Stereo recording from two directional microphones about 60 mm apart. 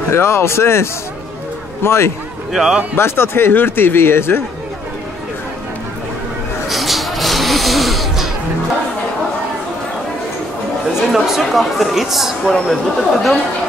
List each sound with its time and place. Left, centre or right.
0.1 s speech: left
2.5 s a man's voice: centre
3.0 s speech: left
6.7 s a sound: centre
11.0 s speech: centre